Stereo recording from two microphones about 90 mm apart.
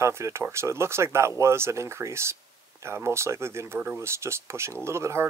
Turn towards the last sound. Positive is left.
turn(degrees=-30)  # may be behind; listen again after turning